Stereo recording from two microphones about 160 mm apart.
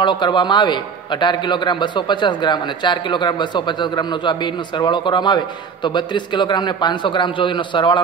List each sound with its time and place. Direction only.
0.0 s a man's voice: 30° left (ahead or behind)